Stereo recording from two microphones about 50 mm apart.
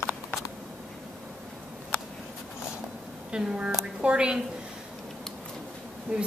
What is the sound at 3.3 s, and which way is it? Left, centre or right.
A woman's voice, centre.